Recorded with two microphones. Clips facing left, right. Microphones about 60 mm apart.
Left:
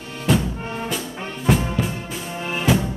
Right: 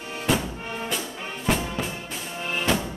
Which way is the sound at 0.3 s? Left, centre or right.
Centre.